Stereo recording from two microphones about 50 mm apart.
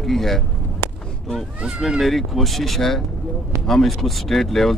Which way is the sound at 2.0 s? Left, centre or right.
Centre.